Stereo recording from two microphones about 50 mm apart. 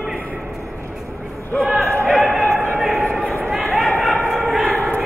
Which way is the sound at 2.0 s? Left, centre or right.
Centre.